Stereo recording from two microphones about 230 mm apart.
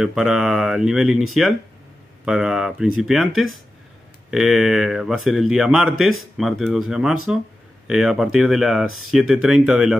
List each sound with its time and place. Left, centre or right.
0.0 s speech: centre